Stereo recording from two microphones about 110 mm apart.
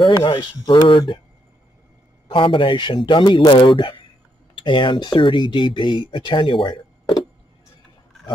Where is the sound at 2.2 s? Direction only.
50° left (ahead or behind).